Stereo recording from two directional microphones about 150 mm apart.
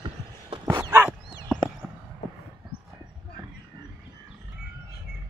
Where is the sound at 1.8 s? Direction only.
5° right (ahead or behind).